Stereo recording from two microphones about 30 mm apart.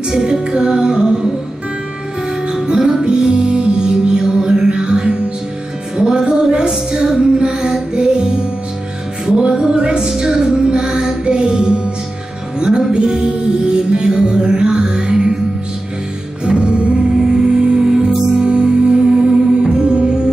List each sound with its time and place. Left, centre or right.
0.1 s music: centre
2.7 s music: right
6.5 s a sound: right
7.3 s child singing: right
7.9 s music: right
9.5 s music: centre
9.8 s music: right
16.4 s music: right